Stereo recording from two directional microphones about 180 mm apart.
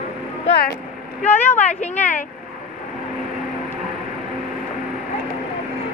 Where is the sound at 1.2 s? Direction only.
10° left (ahead or behind).